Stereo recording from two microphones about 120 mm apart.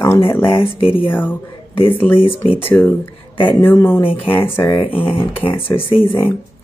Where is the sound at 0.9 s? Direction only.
15° left (ahead or behind).